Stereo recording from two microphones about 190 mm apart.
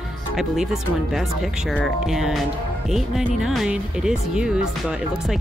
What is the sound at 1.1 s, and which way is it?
Speech, centre (ahead or behind).